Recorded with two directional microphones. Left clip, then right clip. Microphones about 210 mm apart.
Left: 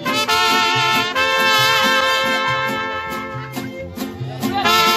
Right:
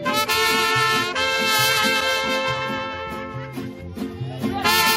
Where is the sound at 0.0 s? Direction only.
55° right (ahead or behind).